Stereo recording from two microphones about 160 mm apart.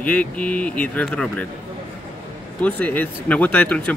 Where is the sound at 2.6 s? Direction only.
10° left (ahead or behind).